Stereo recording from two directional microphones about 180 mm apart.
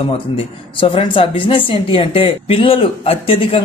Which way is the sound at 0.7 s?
30° left (ahead or behind).